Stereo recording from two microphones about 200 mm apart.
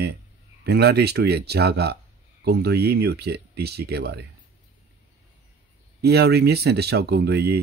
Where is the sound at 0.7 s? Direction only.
55° right (ahead or behind).